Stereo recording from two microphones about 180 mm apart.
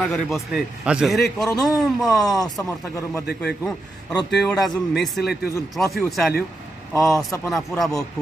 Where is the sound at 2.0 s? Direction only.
20° left (ahead or behind).